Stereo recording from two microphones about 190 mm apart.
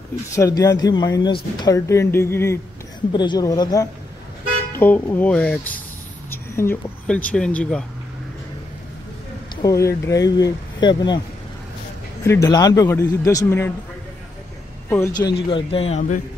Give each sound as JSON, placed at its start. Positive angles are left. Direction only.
{"t": 0.4, "sound": "speech", "side_deg": 15}
{"t": 4.7, "sound": "speech", "side_deg": 10}
{"t": 9.6, "sound": "speech", "side_deg": 15}
{"t": 12.2, "sound": "speech", "side_deg": 15}
{"t": 15.1, "sound": "speech", "side_deg": 25}